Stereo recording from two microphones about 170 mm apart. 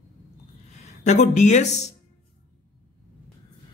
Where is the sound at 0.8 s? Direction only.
45° left (ahead or behind).